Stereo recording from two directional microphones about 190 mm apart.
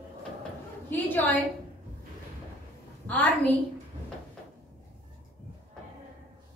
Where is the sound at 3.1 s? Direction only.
10° left (ahead or behind).